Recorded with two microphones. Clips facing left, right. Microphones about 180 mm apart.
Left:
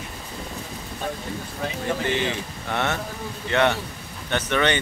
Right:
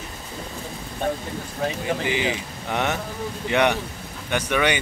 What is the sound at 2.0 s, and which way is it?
Speech, 10° right (ahead or behind).